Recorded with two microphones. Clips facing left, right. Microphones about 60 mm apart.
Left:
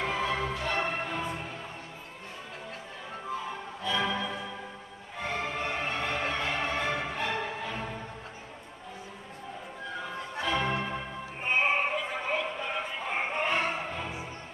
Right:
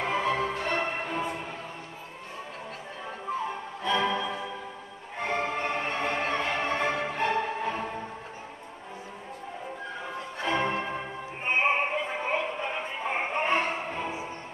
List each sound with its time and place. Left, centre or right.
0.0 s music: right
3.8 s music: right
10.4 s music: right